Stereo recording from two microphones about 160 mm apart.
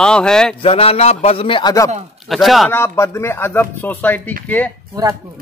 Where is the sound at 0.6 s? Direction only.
35° left (ahead or behind).